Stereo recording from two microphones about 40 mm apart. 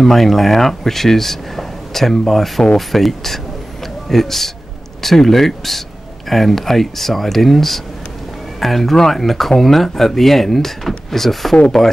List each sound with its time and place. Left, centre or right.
0.0 s speech: centre